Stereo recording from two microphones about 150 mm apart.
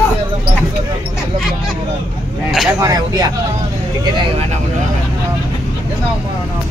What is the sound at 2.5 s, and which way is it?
Speech, centre (ahead or behind).